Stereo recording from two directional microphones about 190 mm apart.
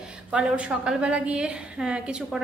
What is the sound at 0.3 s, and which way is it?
A woman's voice, 5° right (ahead or behind).